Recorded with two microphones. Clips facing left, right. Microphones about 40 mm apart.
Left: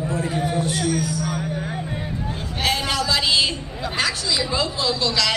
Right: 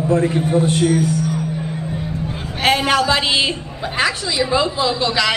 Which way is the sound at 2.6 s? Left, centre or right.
Right.